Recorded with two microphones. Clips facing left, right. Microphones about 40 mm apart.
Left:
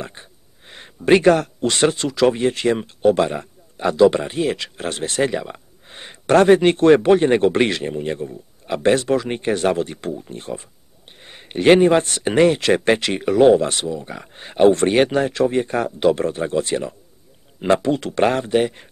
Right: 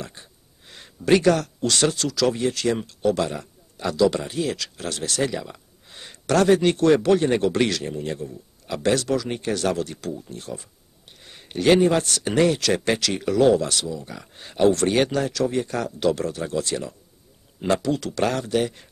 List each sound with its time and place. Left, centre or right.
0.0 s speech: left